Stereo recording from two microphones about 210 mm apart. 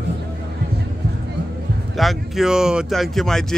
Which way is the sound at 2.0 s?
Centre (ahead or behind).